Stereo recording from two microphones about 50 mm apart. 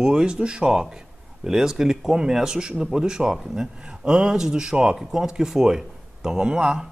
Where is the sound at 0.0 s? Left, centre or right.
Centre.